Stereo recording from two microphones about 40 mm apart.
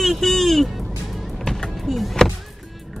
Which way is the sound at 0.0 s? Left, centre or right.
Centre.